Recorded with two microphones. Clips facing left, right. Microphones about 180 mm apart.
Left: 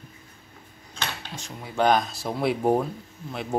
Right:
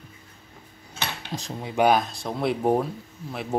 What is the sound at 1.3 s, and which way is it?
Cutlery, 35° right (ahead or behind).